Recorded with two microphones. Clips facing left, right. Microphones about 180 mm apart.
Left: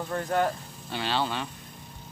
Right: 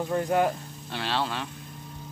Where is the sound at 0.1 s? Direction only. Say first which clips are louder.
Right 2 dB; 15° right (ahead or behind).